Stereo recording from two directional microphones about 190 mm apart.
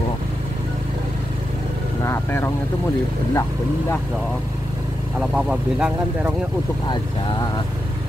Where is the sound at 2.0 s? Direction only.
15° left (ahead or behind).